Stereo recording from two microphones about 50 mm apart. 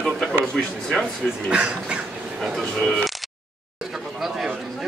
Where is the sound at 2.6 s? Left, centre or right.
Centre.